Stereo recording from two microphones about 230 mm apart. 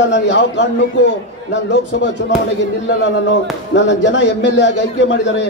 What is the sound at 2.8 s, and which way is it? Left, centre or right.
Speech, left.